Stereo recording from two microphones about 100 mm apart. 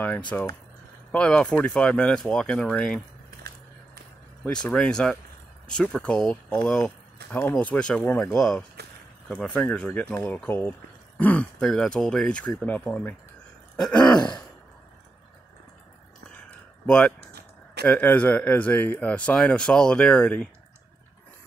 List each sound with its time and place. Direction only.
0.3 s speech: 20° left (ahead or behind)
4.5 s speech: 10° left (ahead or behind)
8.4 s speech: 5° left (ahead or behind)
11.6 s speech: 5° left (ahead or behind)
16.3 s a sound: 10° left (ahead or behind)
17.8 s speech: 15° left (ahead or behind)